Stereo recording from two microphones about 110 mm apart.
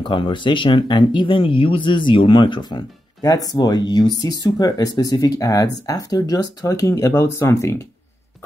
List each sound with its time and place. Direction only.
0.0 s speech: 45° left (ahead or behind); by 7.8 s 25° left (ahead or behind)